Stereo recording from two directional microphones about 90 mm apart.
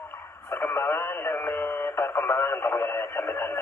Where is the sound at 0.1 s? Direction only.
30° left (ahead or behind).